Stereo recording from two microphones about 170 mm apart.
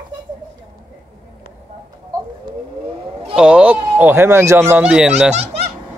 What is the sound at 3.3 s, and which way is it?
Speech, 5° right (ahead or behind).